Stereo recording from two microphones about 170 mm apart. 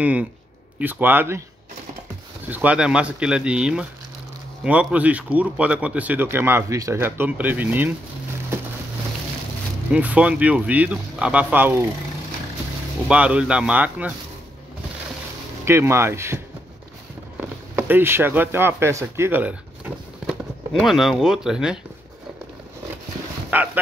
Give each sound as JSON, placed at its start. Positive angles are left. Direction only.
{"t": 0.0, "sound": "speech", "side_deg": -10}
{"t": 2.5, "sound": "speech", "side_deg": -10}
{"t": 9.8, "sound": "speech", "side_deg": -10}
{"t": 13.1, "sound": "speech", "side_deg": -5}
{"t": 15.6, "sound": "speech", "side_deg": -15}
{"t": 17.4, "sound": "speech", "side_deg": -10}
{"t": 23.5, "sound": "speech", "side_deg": -10}